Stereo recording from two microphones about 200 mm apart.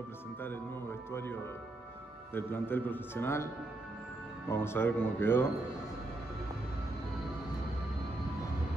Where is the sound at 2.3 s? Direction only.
10° left (ahead or behind).